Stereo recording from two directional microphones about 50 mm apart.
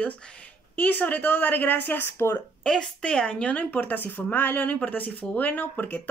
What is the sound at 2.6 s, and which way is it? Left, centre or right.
Speech, centre.